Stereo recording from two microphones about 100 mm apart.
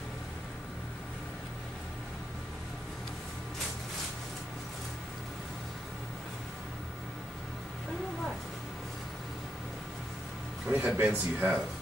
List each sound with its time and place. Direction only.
10.7 s speech: 15° right (ahead or behind)